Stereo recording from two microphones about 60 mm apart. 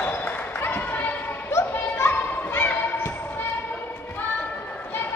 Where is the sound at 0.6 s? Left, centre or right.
Left.